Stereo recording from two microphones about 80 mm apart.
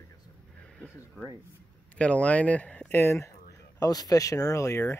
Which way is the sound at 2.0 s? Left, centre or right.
Centre.